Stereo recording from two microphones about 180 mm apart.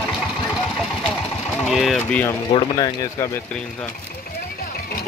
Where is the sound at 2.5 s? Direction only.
20° left (ahead or behind).